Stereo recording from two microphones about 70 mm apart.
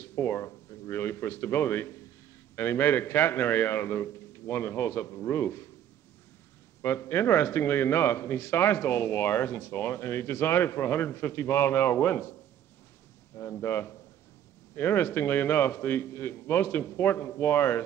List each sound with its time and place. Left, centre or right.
0.0 s a sound: left
2.5 s speech: left
6.8 s speech: left
13.4 s speech: left